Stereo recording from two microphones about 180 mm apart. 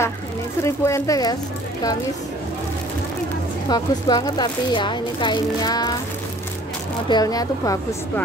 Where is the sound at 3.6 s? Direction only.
20° left (ahead or behind).